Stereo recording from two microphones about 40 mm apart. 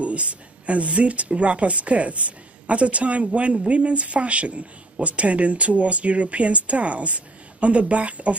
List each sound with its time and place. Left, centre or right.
0.0 s speech: right